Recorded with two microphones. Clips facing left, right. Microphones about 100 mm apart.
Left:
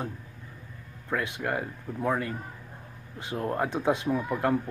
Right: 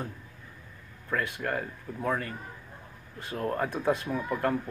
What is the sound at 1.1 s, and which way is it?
Speech, 15° left (ahead or behind).